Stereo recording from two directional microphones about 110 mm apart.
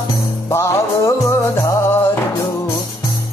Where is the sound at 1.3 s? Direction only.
25° left (ahead or behind).